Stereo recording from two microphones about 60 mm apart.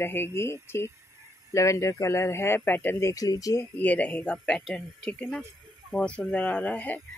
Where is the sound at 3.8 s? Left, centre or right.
Left.